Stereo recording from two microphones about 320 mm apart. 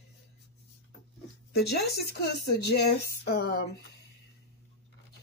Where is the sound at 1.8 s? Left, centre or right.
Left.